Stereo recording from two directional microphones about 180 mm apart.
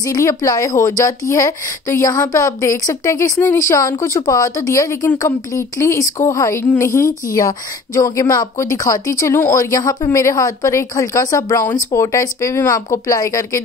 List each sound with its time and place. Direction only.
0.0 s a woman's voice: 20° left (ahead or behind)